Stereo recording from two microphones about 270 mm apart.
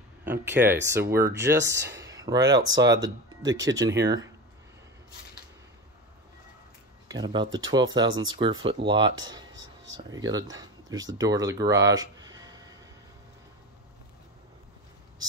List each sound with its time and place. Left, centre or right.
0.2 s speech: centre
0.7 s speech: right
1.9 s speech: centre
3.6 s speech: right
4.0 s speech: centre
7.1 s speech: centre